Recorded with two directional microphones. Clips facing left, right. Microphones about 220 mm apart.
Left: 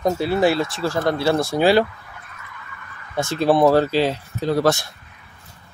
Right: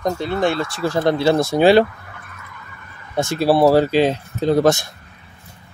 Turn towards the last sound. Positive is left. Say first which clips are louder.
# right 3 dB
turn(degrees=-20)  # may be behind; listen again after turning